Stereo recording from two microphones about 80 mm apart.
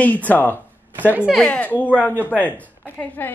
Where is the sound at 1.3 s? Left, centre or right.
Centre.